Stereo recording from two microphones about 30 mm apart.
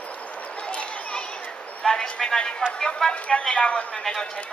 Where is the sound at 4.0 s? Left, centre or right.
Centre.